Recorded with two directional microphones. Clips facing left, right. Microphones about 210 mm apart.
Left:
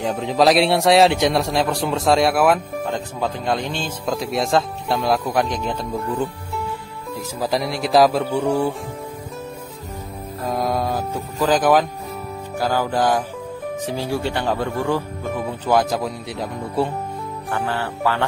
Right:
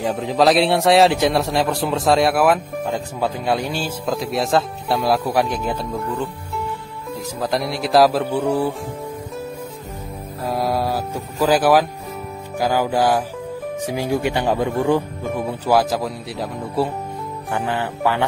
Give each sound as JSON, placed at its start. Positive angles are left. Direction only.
{"t": 0.0, "sound": "a man's voice", "side_deg": 0}
{"t": 7.3, "sound": "a man's voice", "side_deg": 0}
{"t": 10.5, "sound": "music", "side_deg": -5}
{"t": 11.4, "sound": "a man's voice", "side_deg": -5}
{"t": 17.5, "sound": "speech", "side_deg": -15}